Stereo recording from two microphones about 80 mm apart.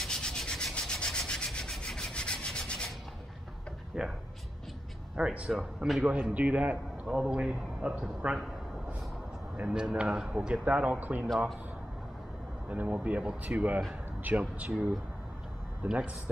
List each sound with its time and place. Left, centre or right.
0.0 s rub: centre
3.9 s speech: centre
5.1 s a man's voice: centre
7.1 s a man's voice: centre
7.3 s speech: centre
9.6 s speech: centre
11.2 s a man's voice: centre
12.6 s speech: centre